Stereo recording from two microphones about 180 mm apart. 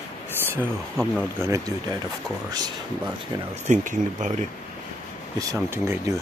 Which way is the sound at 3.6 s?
45° right (ahead or behind).